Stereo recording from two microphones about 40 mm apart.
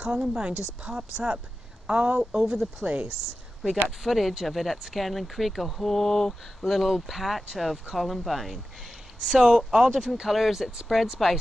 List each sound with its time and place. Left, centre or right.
0.0 s a woman's voice: centre
1.9 s speech: right
2.3 s a woman's voice: centre
4.0 s a woman's voice: centre
6.7 s speech: centre
8.8 s a woman's voice: centre